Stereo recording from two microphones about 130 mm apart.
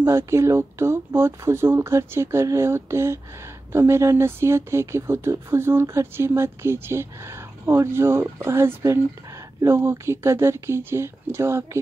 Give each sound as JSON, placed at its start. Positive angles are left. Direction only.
{"t": 0.0, "sound": "speech", "side_deg": -20}